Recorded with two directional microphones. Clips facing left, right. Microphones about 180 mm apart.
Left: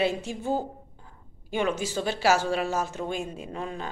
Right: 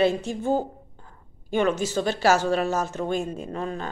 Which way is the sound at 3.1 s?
45° right (ahead or behind).